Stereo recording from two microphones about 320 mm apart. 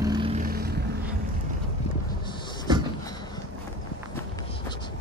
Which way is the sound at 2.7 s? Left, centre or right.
Centre.